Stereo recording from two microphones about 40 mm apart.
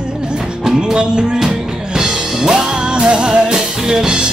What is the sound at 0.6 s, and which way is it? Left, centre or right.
Music, centre.